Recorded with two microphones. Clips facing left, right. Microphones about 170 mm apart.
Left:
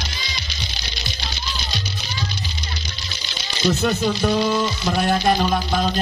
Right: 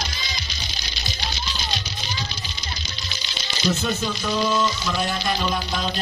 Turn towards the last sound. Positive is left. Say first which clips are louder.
# left 5 dB
turn(degrees=50)  # may be behind; listen again after turning